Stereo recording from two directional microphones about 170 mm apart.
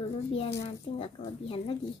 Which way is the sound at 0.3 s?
35° left (ahead or behind).